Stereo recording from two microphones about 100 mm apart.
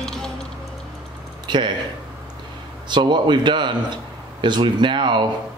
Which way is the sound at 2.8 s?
50° right (ahead or behind).